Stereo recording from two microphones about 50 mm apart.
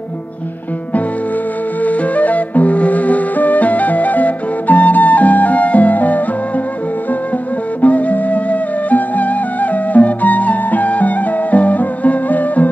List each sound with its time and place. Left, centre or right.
1.8 s flute: left
7.8 s music: left